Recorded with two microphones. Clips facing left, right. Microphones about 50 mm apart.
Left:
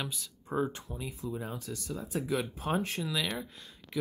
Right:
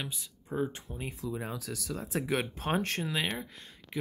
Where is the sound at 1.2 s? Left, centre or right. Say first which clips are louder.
Right 2 dB; right.